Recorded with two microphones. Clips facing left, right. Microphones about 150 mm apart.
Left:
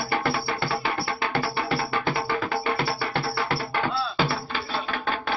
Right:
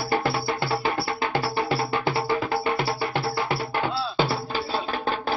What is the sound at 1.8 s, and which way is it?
Music, 30° right (ahead or behind).